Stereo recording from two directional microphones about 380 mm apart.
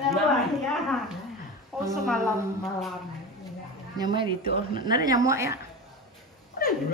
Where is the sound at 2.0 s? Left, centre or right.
Centre.